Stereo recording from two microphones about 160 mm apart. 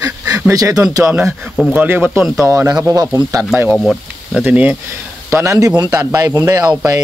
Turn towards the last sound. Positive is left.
turn(degrees=-25)  # may be behind; listen again after turning